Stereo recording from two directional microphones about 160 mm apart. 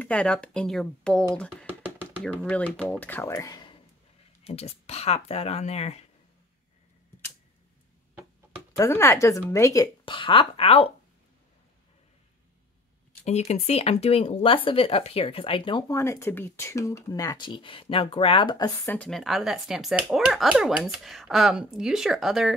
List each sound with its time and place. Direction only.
0.0 s speech: 5° left (ahead or behind)
4.5 s speech: 40° left (ahead or behind)
8.7 s speech: 20° left (ahead or behind); by 10.9 s 35° left (ahead or behind)
13.2 s speech: 45° left (ahead or behind)
15.9 s speech: 15° left (ahead or behind)
18.9 s speech: 5° left (ahead or behind)